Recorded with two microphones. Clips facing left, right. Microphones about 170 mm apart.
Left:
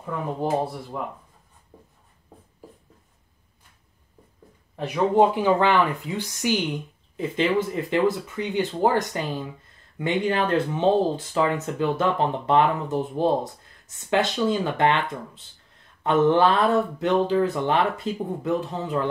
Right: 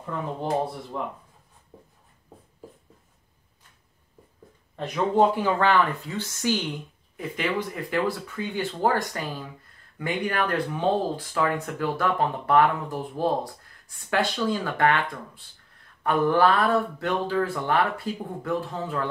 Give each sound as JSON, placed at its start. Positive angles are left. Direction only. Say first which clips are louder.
{"t": 0.9, "sound": "speech", "louder": "even", "side_deg": 5}
{"t": 4.7, "sound": "speech", "louder": "left 3 dB", "side_deg": 10}
{"t": 7.2, "sound": "speech", "louder": "left 5 dB", "side_deg": 25}